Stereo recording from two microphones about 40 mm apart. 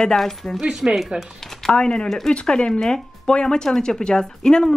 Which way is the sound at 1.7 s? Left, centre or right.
Left.